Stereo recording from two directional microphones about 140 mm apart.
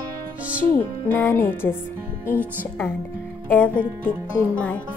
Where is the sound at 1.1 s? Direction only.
15° left (ahead or behind).